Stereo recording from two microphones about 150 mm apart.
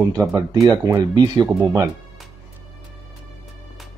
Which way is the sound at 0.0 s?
20° right (ahead or behind).